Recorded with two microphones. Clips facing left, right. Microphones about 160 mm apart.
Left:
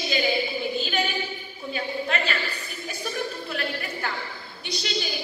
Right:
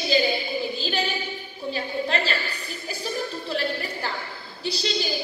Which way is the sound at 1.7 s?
30° right (ahead or behind).